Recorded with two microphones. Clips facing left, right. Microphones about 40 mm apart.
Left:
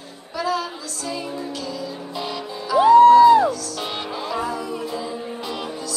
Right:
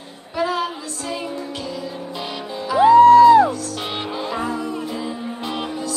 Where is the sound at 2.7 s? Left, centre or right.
Centre.